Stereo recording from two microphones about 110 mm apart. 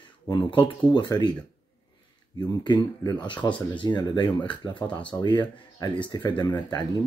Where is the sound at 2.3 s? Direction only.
40° left (ahead or behind).